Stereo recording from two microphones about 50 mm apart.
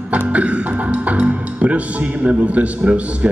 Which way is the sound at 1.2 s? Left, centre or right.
Right.